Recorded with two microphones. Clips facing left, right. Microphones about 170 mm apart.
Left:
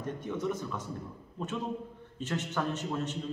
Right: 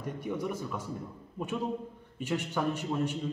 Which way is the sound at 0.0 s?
10° right (ahead or behind).